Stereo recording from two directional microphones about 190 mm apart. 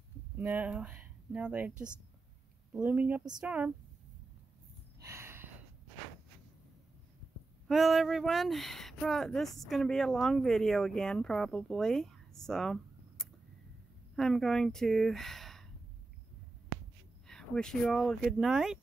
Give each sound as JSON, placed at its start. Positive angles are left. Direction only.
{"t": 0.4, "sound": "speech", "side_deg": -10}
{"t": 2.7, "sound": "speech", "side_deg": -10}
{"t": 5.0, "sound": "a sound", "side_deg": -15}
{"t": 7.6, "sound": "speech", "side_deg": 0}
{"t": 17.3, "sound": "speech", "side_deg": 5}